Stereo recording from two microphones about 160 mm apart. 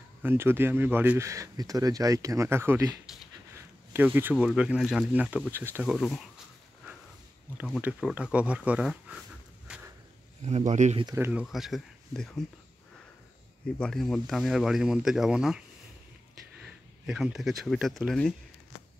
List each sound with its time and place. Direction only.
0.2 s speech: 15° right (ahead or behind)
3.5 s a sound: 15° right (ahead or behind)
4.5 s speech: 5° right (ahead or behind)
7.8 s speech: 10° right (ahead or behind)
9.7 s a sound: 5° right (ahead or behind)
10.4 s speech: 45° right (ahead or behind)
11.1 s speech: 15° right (ahead or behind)
11.4 s speech: centre (ahead or behind)
13.7 s speech: 5° left (ahead or behind)
16.6 s speech: 5° right (ahead or behind)